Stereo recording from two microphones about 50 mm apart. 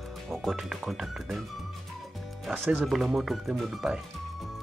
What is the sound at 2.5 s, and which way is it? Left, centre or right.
Speech, right.